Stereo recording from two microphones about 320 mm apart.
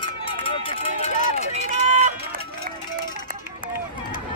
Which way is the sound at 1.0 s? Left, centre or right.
Left.